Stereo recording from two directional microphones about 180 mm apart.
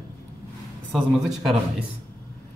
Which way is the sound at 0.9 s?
Centre (ahead or behind).